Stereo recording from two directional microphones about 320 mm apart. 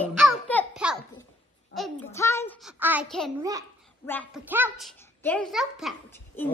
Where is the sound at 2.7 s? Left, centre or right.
Centre.